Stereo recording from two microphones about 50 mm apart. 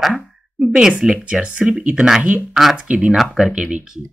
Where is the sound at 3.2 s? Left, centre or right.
Centre.